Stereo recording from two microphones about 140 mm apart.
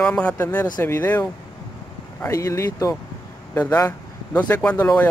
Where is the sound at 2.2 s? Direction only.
20° left (ahead or behind).